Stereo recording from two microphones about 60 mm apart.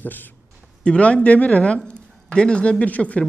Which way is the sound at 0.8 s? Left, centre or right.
Centre.